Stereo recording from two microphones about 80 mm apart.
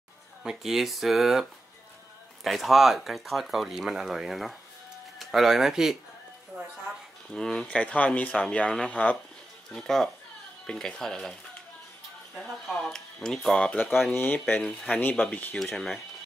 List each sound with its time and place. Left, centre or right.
0.4 s speech: centre
7.3 s speech: centre
9.7 s speech: centre
12.4 s speech: centre
14.1 s speech: left
14.6 s speech: centre
15.0 s speech: left
15.5 s speech: centre